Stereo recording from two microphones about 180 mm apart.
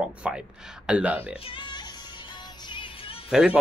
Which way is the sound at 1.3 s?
30° left (ahead or behind).